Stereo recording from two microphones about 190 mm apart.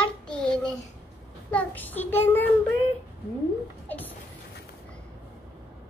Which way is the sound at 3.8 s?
10° left (ahead or behind).